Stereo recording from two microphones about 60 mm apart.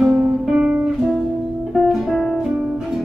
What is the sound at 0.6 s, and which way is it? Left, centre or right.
Guitar, centre.